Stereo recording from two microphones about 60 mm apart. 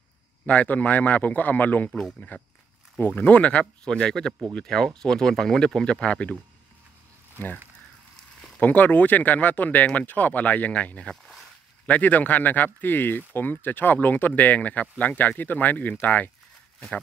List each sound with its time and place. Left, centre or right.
0.5 s speech: left
7.4 s speech: left
8.5 s speech: left